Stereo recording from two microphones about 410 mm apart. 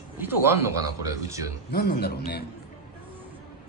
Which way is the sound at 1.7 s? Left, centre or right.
Left.